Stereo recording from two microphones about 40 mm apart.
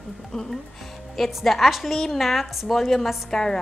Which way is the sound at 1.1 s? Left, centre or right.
Centre.